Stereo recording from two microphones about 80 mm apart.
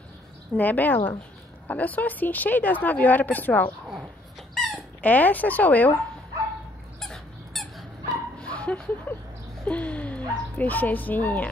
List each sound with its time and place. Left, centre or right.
0.6 s speech: left
4.6 s dog: centre
5.0 s speech: left
7.0 s squeak: centre
8.4 s a sound: centre
9.7 s speech: centre